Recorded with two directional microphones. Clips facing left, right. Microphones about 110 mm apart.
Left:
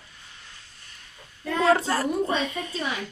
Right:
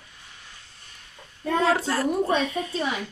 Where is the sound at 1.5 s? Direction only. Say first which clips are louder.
Left 1 dB; centre (ahead or behind).